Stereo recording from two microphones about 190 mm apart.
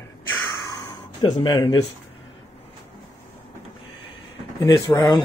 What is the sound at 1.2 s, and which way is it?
Speech, 25° left (ahead or behind).